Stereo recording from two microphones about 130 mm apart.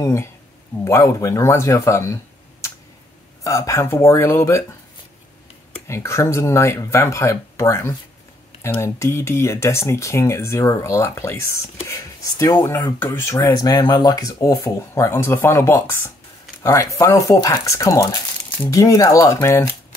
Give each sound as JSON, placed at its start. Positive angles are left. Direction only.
{"t": 0.0, "sound": "speech", "side_deg": 20}
{"t": 3.4, "sound": "speech", "side_deg": 25}
{"t": 5.9, "sound": "speech", "side_deg": 20}